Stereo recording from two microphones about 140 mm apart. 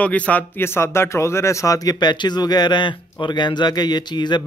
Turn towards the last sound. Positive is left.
turn(degrees=30)  # may be behind; listen again after turning